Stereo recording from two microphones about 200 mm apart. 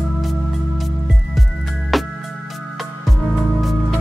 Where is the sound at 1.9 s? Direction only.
Centre (ahead or behind).